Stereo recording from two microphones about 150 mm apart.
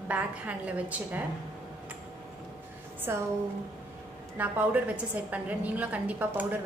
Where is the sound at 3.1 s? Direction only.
15° right (ahead or behind).